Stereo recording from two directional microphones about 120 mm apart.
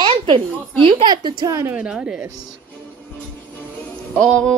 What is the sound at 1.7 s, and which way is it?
Speech, 10° right (ahead or behind).